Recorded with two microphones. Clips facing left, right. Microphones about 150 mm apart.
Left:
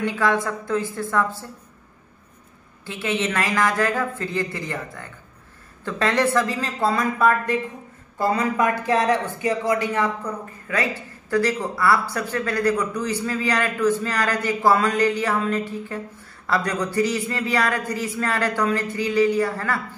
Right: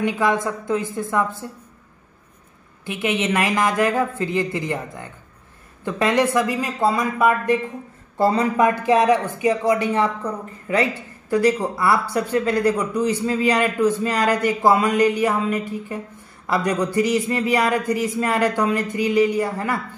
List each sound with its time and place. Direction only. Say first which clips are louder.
0.0 s speech: right 2 dB; 20° right (ahead or behind)
2.8 s speech: right 2 dB; 20° right (ahead or behind)
8.2 s speech: right 4 dB; 30° right (ahead or behind)